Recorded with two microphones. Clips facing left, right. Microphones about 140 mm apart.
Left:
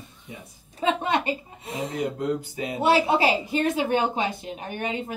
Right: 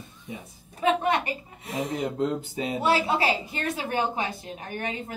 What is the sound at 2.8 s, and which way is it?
A woman's voice, 20° left (ahead or behind).